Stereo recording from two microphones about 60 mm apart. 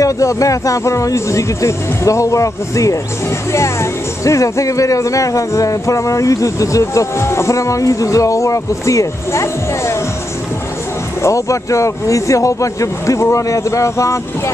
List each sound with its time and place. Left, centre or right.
0.0 s speech: left
3.5 s speech: left
11.2 s speech: left